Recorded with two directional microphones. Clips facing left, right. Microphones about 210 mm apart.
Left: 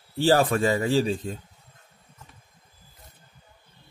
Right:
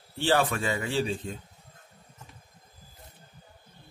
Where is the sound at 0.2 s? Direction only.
40° left (ahead or behind).